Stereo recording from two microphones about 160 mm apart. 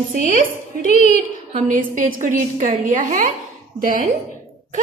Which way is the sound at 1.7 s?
60° right (ahead or behind).